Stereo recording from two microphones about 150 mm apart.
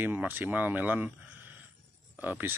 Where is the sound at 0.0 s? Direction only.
10° right (ahead or behind).